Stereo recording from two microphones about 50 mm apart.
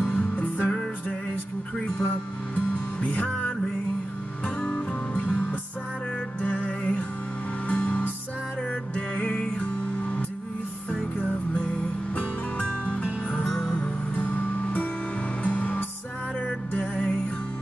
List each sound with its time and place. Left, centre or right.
0.1 s music: left
2.5 s music: left
4.6 s music: left
6.4 s music: left
9.2 s music: centre
14.1 s music: left